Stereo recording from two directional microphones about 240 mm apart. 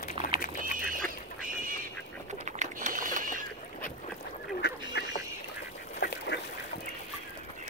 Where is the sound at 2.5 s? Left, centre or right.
Right.